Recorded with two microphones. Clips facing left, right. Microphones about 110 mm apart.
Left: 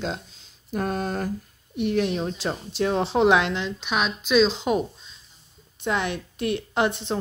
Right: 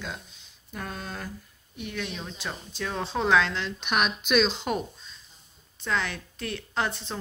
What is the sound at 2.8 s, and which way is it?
Speech, 25° left (ahead or behind).